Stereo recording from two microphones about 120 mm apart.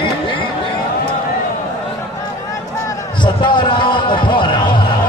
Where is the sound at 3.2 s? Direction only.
40° left (ahead or behind).